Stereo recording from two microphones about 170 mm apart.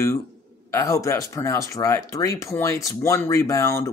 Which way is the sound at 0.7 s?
20° left (ahead or behind).